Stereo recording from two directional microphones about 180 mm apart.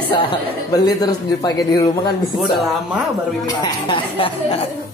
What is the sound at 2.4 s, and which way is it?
Speech, centre (ahead or behind).